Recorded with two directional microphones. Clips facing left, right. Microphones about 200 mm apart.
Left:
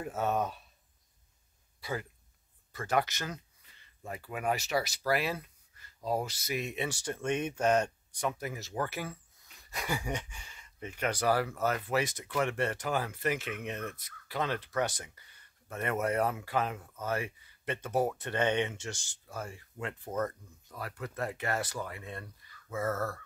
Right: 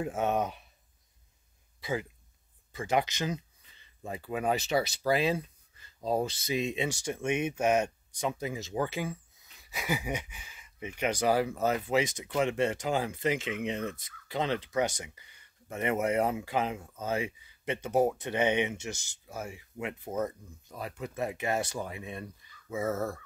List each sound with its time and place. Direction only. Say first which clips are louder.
0.1 s speech: left 2 dB; 25° right (ahead or behind)
1.8 s speech: right 4 dB; 15° right (ahead or behind)
8.2 s speech: right 2 dB; 20° right (ahead or behind)
9.6 s speech: right 2 dB; 5° right (ahead or behind)
11.0 s speech: right 2 dB; 15° right (ahead or behind)
20.6 s speech: right 2 dB; 20° right (ahead or behind)